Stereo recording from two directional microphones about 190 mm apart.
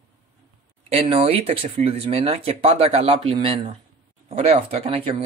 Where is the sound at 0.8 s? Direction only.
35° right (ahead or behind).